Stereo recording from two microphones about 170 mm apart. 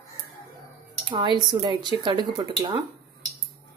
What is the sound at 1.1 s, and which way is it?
Speech, 30° right (ahead or behind).